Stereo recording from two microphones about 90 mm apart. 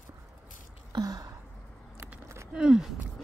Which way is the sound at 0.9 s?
50° right (ahead or behind).